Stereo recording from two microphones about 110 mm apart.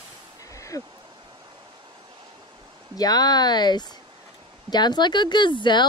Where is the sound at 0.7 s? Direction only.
35° left (ahead or behind).